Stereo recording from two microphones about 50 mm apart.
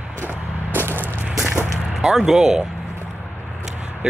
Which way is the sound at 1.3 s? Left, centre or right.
Centre.